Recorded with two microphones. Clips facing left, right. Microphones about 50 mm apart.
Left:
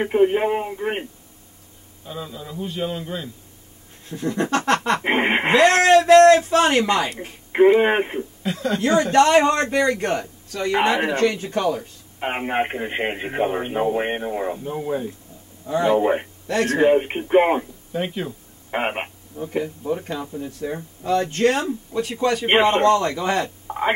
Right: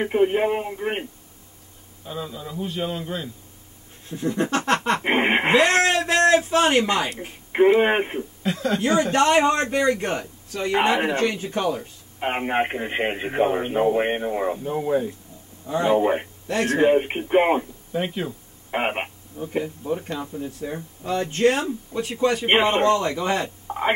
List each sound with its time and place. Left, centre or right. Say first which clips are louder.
0.0 s speech: left 2 dB; centre
2.0 s speech: right 1 dB; centre
4.2 s a sound: left 1 dB; centre
5.0 s speech: even; centre
5.5 s a man's voice: left 6 dB; centre
7.5 s a man's voice: left 2 dB; centre
12.2 s speech: even; centre
16.4 s speech: left 2 dB; right
16.7 s speech: left 1 dB; centre
21.3 s a man's voice: even; centre
23.7 s a woman's voice: left 1 dB; centre